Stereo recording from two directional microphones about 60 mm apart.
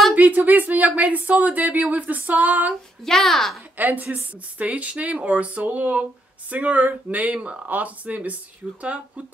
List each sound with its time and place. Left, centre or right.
0.1 s speech: right
3.0 s a child's voice: centre
3.7 s speech: right
7.3 s speech: centre
7.6 s speech: right